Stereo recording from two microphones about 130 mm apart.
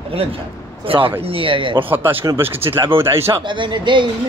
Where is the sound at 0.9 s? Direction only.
45° right (ahead or behind).